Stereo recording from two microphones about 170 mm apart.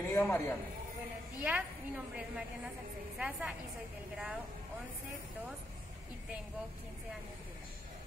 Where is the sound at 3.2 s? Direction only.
5° right (ahead or behind).